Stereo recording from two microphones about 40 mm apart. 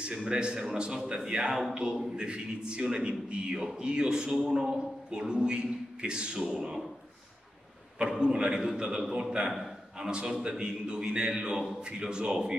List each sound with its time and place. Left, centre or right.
0.0 s a man's voice: right
4.3 s a man's voice: centre
4.6 s a man's voice: centre
8.2 s a man's voice: right
9.5 s a sound: centre
9.9 s a man's voice: centre
11.5 s speech: centre
11.8 s a man's voice: right